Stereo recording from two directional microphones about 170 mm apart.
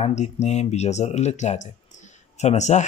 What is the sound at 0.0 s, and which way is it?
Speech, 40° left (ahead or behind).